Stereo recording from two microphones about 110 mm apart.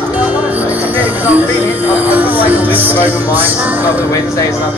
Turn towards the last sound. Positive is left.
turn(degrees=-15)  # may be behind; listen again after turning